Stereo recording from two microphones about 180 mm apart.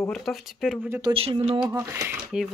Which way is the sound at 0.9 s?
25° right (ahead or behind).